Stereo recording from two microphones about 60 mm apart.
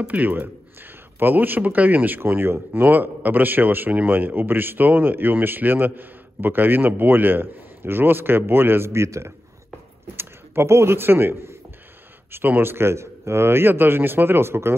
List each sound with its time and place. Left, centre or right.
0.0 s speech: right